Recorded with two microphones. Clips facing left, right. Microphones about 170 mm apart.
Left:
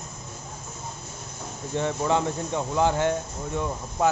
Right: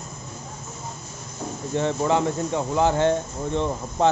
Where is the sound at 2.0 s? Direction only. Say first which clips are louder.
Right 2 dB; 15° right (ahead or behind).